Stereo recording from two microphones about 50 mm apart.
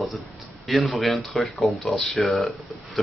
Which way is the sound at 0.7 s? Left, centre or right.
Centre.